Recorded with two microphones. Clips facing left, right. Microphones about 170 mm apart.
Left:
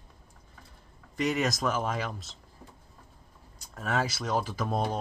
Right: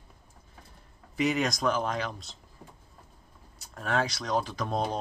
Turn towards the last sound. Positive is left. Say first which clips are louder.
# even
turn(degrees=5)  # may be behind; listen again after turning